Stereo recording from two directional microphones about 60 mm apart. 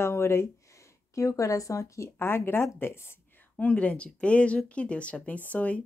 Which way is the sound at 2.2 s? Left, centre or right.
Left.